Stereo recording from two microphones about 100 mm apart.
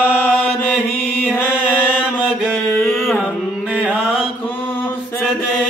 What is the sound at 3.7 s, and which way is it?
Mantra, 15° right (ahead or behind).